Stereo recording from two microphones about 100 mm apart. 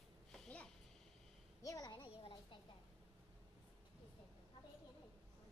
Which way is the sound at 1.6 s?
35° left (ahead or behind).